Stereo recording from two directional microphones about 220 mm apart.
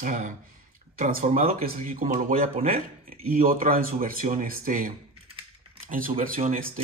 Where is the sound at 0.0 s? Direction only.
35° right (ahead or behind).